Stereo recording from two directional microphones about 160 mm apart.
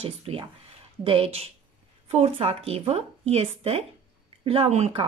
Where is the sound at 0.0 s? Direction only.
35° right (ahead or behind).